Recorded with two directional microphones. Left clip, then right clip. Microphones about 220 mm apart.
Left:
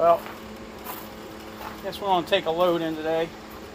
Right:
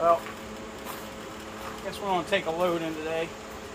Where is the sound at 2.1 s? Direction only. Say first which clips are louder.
Left 5 dB; 40° left (ahead or behind).